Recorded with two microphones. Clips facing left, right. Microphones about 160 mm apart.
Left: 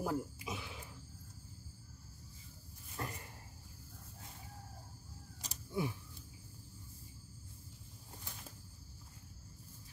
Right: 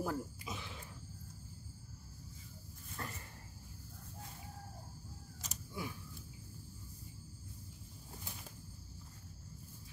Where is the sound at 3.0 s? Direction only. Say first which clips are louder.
Left 3 dB; 20° left (ahead or behind).